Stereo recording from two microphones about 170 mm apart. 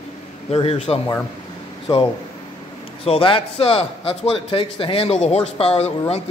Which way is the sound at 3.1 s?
30° left (ahead or behind).